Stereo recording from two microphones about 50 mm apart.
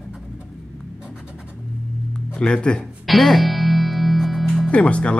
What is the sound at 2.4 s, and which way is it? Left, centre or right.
Speech, left.